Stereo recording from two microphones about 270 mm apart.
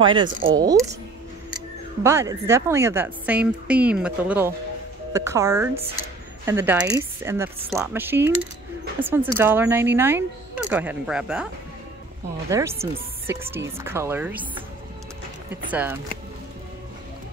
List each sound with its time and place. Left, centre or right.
0.0 s a woman's voice: centre
2.0 s a woman's voice: centre
12.4 s a woman's voice: centre
15.5 s a woman's voice: centre